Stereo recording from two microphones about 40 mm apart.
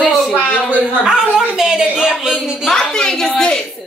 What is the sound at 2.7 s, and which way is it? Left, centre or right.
Speech, centre.